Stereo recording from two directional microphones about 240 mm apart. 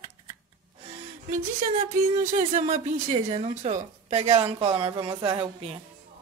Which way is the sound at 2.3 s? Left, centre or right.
Right.